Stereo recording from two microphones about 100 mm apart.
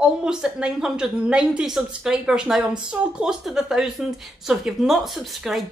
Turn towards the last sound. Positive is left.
turn(degrees=-5)  # may be behind; listen again after turning